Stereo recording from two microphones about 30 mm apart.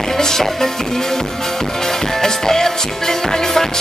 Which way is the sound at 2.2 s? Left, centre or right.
Centre.